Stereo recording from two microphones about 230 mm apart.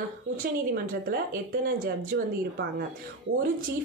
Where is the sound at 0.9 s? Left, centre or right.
Right.